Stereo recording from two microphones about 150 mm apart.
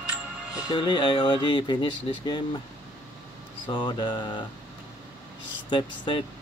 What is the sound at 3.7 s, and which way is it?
Speech, 30° left (ahead or behind).